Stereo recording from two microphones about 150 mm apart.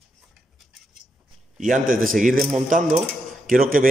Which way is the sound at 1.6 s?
60° right (ahead or behind).